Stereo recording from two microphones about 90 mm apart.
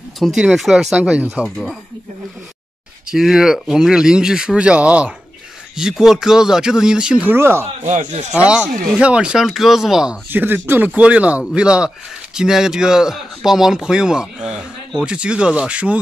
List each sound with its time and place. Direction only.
0.2 s speech: centre (ahead or behind)
0.9 s speech: 15° right (ahead or behind)
3.1 s speech: 5° right (ahead or behind)
7.2 s speech: 25° right (ahead or behind)
8.3 s speech: 10° right (ahead or behind)
10.3 s speech: 25° right (ahead or behind)